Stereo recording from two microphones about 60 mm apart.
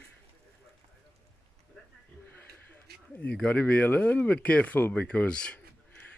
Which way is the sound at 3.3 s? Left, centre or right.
Left.